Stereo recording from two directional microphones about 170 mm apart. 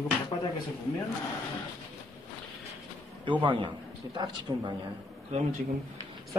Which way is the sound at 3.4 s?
30° right (ahead or behind).